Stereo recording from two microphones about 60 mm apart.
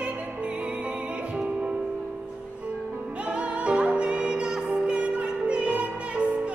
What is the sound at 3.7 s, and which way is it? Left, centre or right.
Music, centre.